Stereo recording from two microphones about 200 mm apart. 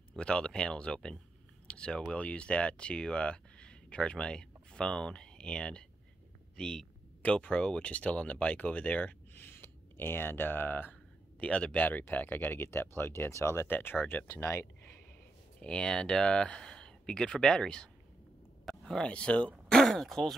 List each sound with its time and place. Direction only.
0.1 s speech: 5° left (ahead or behind)